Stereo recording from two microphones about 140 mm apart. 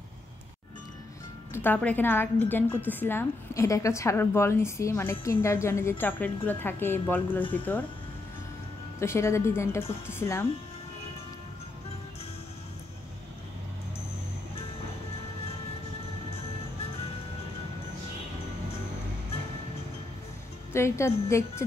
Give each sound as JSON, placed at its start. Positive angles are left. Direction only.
{"t": 1.5, "sound": "a woman's voice", "side_deg": 15}
{"t": 9.0, "sound": "a woman's voice", "side_deg": 20}
{"t": 20.7, "sound": "a woman's voice", "side_deg": 20}